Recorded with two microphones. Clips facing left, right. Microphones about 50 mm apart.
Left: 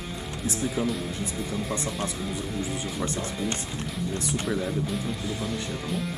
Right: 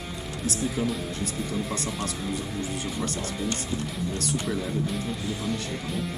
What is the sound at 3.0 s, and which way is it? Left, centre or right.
Speech, left.